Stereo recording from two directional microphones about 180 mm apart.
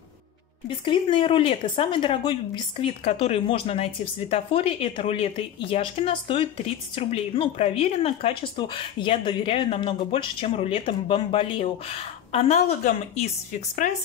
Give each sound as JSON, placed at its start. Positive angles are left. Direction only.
{"t": 0.7, "sound": "speech", "side_deg": 30}